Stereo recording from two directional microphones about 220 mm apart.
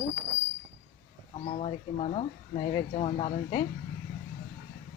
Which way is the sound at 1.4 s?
30° left (ahead or behind).